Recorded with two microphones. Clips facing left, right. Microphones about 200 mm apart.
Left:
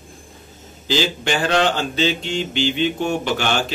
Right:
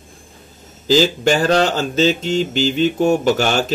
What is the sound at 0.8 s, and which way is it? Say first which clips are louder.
Speech: right 7 dB; 40° right (ahead or behind).